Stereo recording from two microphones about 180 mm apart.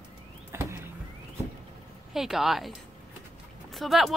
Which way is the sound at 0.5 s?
15° right (ahead or behind).